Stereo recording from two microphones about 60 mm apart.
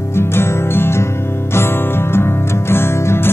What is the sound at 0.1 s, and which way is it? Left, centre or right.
Music, left.